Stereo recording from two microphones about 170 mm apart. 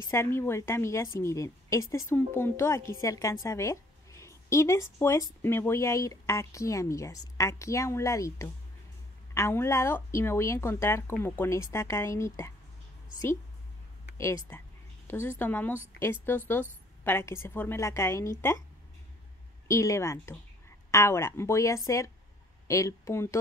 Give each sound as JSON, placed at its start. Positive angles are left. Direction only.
{"t": 0.1, "sound": "speech", "side_deg": 15}
{"t": 14.1, "sound": "speech", "side_deg": 15}
{"t": 19.7, "sound": "speech", "side_deg": 20}